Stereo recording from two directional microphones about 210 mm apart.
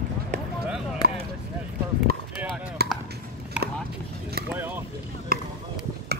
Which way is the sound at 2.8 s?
50° right (ahead or behind).